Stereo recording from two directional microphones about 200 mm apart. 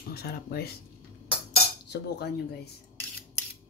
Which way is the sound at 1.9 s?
55° left (ahead or behind).